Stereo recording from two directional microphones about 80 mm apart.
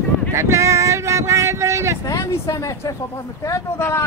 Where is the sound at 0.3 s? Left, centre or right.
Right.